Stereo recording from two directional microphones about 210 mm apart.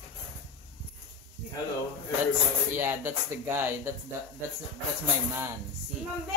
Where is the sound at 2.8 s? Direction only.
10° right (ahead or behind).